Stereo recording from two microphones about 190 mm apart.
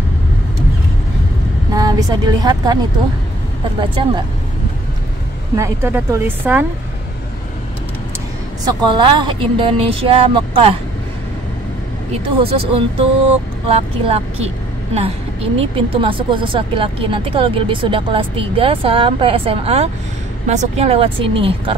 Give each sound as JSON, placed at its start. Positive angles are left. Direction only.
{"t": 1.7, "sound": "a woman's voice", "side_deg": -20}
{"t": 5.6, "sound": "speech", "side_deg": -10}
{"t": 8.6, "sound": "a woman's voice", "side_deg": -25}
{"t": 12.4, "sound": "a woman's voice", "side_deg": -30}